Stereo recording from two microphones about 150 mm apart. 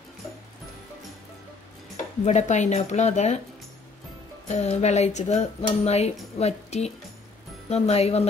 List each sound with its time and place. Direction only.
2.2 s speech: 50° left (ahead or behind)
4.5 s speech: 50° left (ahead or behind)